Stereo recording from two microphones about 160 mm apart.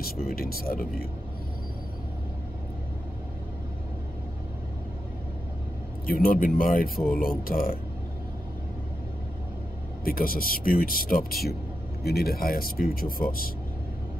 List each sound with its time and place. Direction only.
0.0 s speech: 65° left (ahead or behind)
6.0 s speech: 65° left (ahead or behind)
10.0 s speech: 65° left (ahead or behind)